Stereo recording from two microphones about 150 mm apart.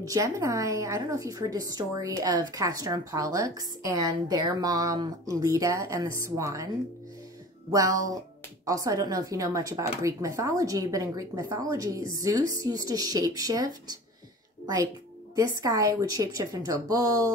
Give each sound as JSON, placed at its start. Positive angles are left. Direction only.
{"t": 0.0, "sound": "a woman's voice", "side_deg": -20}
{"t": 7.7, "sound": "a woman's voice", "side_deg": -20}
{"t": 15.3, "sound": "a woman's voice", "side_deg": -20}